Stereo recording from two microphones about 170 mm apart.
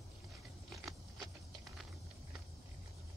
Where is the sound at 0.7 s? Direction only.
Centre (ahead or behind).